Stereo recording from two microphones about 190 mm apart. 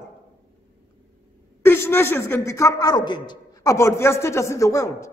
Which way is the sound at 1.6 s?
10° left (ahead or behind).